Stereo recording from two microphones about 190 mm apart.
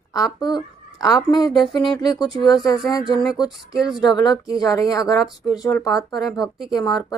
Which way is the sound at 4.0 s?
20° left (ahead or behind).